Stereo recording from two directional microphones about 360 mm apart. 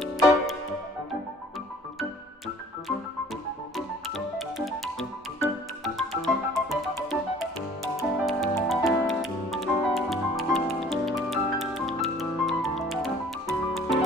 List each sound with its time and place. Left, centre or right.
3.7 s music: centre